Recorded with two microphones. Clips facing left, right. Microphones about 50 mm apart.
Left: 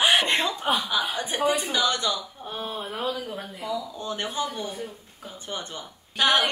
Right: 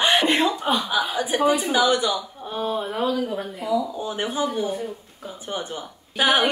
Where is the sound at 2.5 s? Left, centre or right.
Centre.